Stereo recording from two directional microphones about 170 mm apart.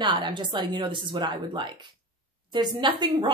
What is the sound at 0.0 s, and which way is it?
Speech, 25° right (ahead or behind).